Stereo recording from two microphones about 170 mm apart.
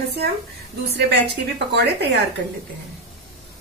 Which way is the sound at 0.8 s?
75° right (ahead or behind).